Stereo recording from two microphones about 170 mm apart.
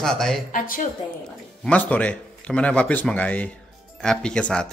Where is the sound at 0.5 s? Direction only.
55° left (ahead or behind).